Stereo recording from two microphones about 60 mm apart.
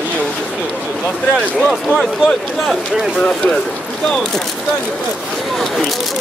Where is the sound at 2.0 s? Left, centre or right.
Centre.